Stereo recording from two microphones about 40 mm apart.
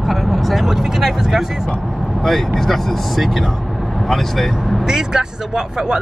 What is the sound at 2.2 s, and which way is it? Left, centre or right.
Speech, centre.